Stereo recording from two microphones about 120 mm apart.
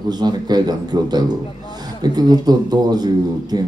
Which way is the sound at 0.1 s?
35° right (ahead or behind).